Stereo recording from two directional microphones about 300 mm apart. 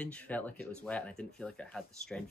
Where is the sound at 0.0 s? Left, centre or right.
Centre.